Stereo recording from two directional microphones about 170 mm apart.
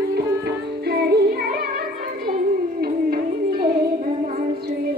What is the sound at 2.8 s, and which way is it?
Music, 65° right (ahead or behind).